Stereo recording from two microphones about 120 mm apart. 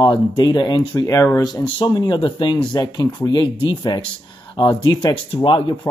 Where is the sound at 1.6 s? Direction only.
45° left (ahead or behind).